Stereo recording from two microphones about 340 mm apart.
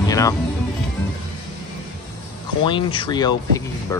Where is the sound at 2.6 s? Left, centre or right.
Centre.